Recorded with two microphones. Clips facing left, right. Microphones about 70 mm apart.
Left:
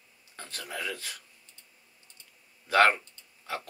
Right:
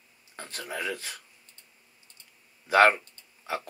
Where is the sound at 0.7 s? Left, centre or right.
Right.